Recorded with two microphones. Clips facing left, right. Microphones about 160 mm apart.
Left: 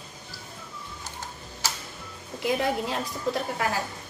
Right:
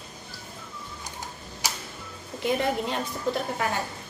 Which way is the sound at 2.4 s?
Centre (ahead or behind).